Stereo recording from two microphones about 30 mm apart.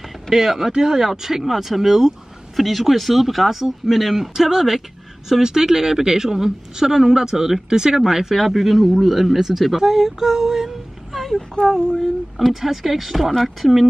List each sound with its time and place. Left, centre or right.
0.3 s speech: centre
0.7 s speech: right
11.1 s a sound: centre
12.4 s speech: centre